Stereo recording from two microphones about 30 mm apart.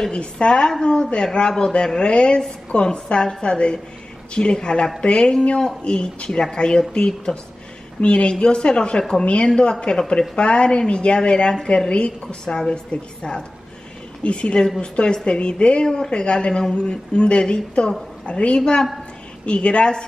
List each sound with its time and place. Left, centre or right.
0.1 s a woman's voice: left
5.9 s a woman's voice: left
9.2 s a woman's voice: left
12.5 s a woman's voice: left
15.8 s a woman's voice: left